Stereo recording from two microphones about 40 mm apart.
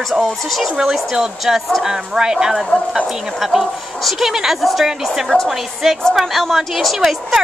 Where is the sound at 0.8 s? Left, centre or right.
Centre.